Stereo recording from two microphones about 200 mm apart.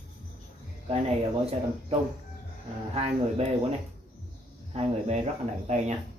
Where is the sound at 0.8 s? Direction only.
30° right (ahead or behind).